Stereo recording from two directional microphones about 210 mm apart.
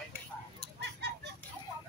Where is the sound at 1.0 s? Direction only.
55° right (ahead or behind).